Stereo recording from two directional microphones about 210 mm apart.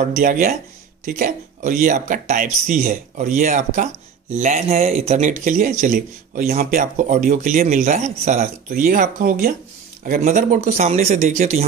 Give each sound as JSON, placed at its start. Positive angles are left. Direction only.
{"t": 0.1, "sound": "speech", "side_deg": -40}